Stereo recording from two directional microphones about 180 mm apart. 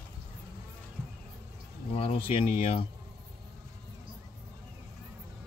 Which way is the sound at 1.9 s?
30° left (ahead or behind).